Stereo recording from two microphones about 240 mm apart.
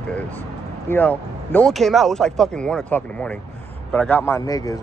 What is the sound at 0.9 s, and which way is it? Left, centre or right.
A man's voice, centre.